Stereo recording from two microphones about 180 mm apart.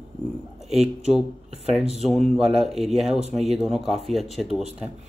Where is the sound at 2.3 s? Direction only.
Centre (ahead or behind).